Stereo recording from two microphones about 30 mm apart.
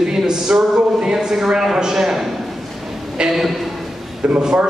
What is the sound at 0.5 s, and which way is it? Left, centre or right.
Speech, right.